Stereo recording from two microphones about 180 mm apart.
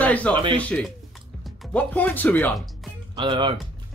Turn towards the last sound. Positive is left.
turn(degrees=-25)  # may be behind; listen again after turning